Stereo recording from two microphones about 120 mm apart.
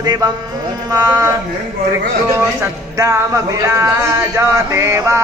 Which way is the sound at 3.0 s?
25° right (ahead or behind).